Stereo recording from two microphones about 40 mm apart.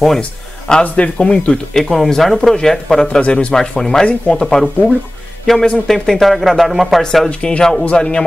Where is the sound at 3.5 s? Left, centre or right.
Centre.